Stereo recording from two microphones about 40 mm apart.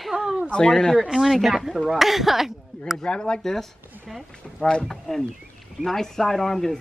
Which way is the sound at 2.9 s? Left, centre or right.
Left.